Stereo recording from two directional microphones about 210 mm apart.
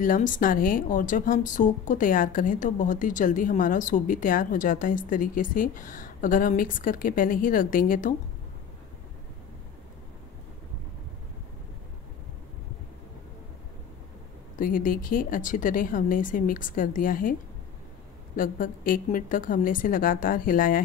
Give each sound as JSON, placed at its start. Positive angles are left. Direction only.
{"t": 0.0, "sound": "speech", "side_deg": 40}
{"t": 14.6, "sound": "speech", "side_deg": 40}